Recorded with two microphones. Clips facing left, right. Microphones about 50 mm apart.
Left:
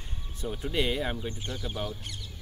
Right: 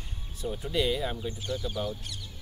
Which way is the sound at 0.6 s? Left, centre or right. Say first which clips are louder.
Even; left.